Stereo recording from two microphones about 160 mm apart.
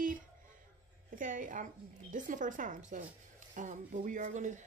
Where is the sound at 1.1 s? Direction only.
55° right (ahead or behind).